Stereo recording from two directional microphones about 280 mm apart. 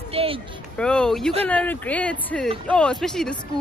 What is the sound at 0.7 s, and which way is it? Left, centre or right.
A woman's voice, centre.